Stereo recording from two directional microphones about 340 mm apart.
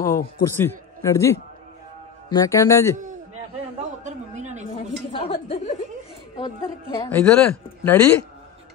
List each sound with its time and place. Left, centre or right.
0.0 s a man's voice: centre
3.8 s a sound: right
4.7 s a woman's voice: centre